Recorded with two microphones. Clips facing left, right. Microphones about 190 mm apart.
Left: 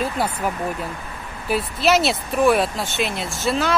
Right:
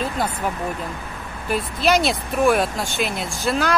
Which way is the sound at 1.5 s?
5° left (ahead or behind).